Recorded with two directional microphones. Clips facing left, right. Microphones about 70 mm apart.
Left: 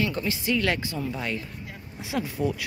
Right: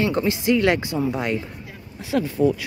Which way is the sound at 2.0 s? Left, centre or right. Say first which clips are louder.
Right 7 dB; centre.